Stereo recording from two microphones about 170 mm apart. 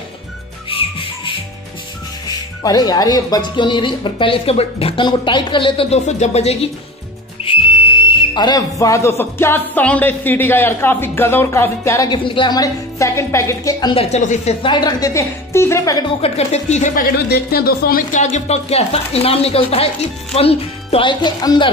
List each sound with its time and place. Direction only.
0.7 s music: 30° left (ahead or behind)
2.2 s speech: 20° left (ahead or behind)
7.4 s whistle: 35° left (ahead or behind)
8.2 s music: 25° left (ahead or behind)
12.1 s speech: 25° left (ahead or behind)
14.1 s a woman's voice: 45° left (ahead or behind)
14.6 s speech: 25° left (ahead or behind)
16.2 s a woman's voice: 40° left (ahead or behind)